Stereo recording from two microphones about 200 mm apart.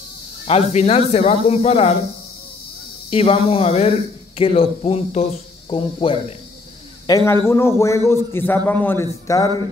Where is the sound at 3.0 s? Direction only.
30° left (ahead or behind).